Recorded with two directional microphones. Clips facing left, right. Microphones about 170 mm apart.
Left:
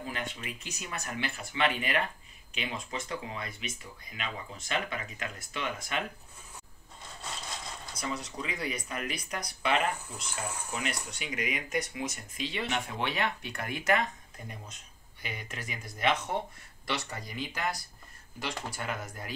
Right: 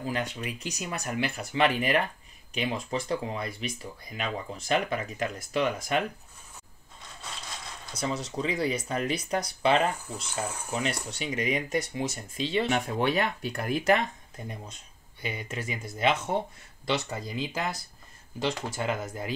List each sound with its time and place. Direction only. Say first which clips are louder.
0.0 s speech: right 6 dB; 40° right (ahead or behind)
8.0 s speech: right 6 dB; 25° right (ahead or behind)
15.2 s speech: right 6 dB; 30° right (ahead or behind)